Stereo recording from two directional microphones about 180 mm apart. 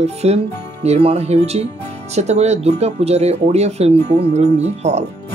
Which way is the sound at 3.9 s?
65° right (ahead or behind).